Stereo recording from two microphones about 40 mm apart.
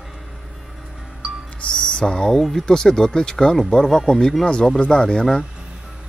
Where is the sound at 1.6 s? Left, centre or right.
Left.